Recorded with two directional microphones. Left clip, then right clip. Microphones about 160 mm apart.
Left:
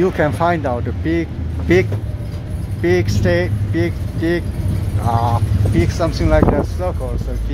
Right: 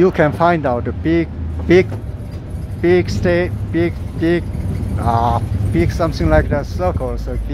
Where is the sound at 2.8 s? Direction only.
10° right (ahead or behind).